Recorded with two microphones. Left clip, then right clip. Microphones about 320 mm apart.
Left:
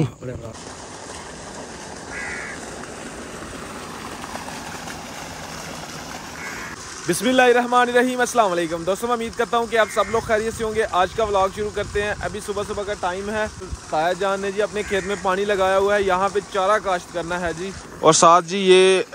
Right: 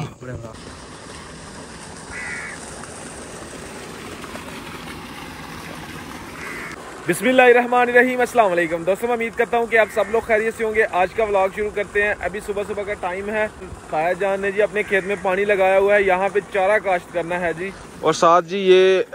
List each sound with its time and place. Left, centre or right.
2.1 s crow: left
7.1 s a man's voice: centre